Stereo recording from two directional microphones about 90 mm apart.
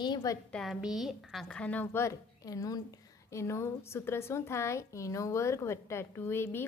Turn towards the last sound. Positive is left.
turn(degrees=25)  # may be behind; listen again after turning